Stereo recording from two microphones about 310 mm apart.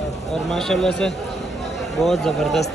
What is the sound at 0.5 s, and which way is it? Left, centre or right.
Speech, centre.